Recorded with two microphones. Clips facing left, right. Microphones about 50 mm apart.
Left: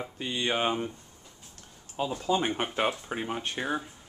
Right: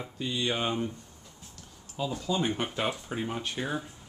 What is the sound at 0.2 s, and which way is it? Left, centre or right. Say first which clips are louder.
Speech: left 2 dB; left.